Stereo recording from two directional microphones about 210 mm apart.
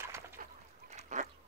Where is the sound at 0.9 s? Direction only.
35° right (ahead or behind).